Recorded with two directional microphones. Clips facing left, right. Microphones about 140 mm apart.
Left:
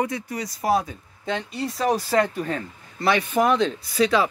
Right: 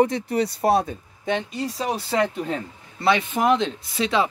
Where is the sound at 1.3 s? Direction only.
20° right (ahead or behind).